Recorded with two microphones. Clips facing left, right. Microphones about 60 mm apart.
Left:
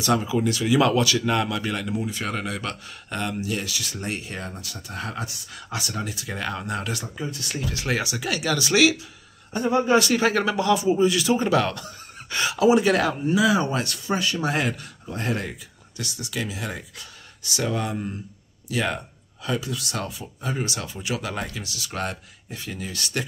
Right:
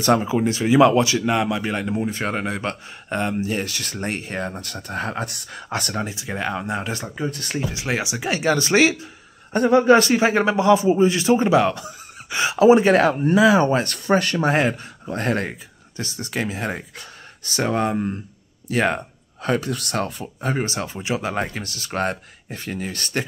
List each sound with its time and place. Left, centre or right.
0.0 s speech: right
5.2 s speech: right
5.5 s speech: right
6.0 s speech: right
7.2 s speech: right
7.5 s speech: right
9.5 s speech: right
10.1 s speech: right
12.4 s speech: right
15.1 s speech: right
16.0 s speech: right